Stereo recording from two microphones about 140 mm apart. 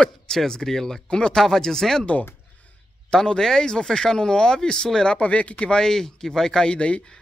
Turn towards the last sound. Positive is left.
turn(degrees=5)  # may be behind; listen again after turning